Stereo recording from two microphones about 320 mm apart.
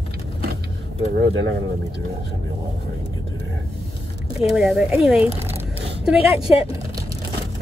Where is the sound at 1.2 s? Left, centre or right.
Right.